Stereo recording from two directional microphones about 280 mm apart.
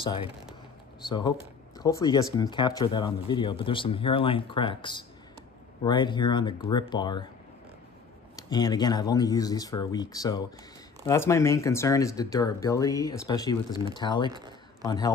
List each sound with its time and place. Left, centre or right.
0.0 s speech: centre
8.4 s speech: centre
14.3 s a sound: centre
14.9 s speech: centre